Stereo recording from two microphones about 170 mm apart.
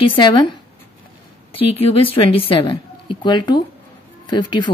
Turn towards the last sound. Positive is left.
turn(degrees=25)  # may be behind; listen again after turning